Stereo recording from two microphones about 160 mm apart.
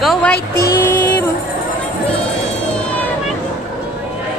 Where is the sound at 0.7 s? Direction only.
15° left (ahead or behind).